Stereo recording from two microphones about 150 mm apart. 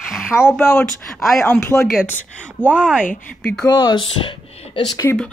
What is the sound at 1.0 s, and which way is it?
Speech, centre (ahead or behind).